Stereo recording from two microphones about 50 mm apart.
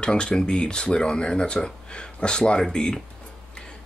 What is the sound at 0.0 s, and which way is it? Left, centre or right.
Speech, left.